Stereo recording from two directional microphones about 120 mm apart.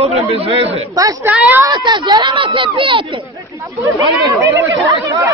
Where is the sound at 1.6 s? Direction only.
40° right (ahead or behind).